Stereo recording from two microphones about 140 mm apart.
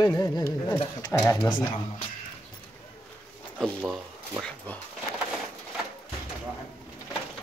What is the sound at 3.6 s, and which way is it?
Speech, 5° left (ahead or behind).